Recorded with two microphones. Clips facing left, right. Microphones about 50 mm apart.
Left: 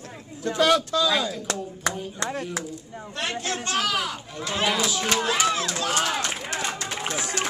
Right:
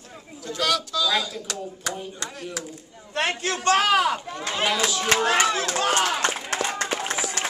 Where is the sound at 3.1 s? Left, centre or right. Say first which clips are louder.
Right 4 dB; right.